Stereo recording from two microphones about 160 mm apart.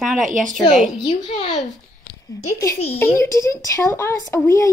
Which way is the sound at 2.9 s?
15° left (ahead or behind).